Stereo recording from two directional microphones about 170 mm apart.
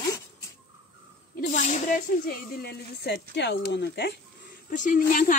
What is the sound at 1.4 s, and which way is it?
Speech, 45° left (ahead or behind).